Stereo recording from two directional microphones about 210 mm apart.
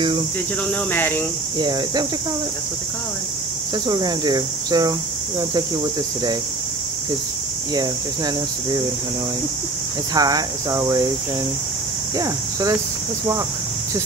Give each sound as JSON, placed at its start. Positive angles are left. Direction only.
{"t": 0.7, "sound": "speech", "side_deg": 10}
{"t": 1.6, "sound": "speech", "side_deg": -20}
{"t": 3.7, "sound": "speech", "side_deg": -20}
{"t": 10.1, "sound": "speech", "side_deg": -20}
{"t": 12.2, "sound": "speech", "side_deg": -15}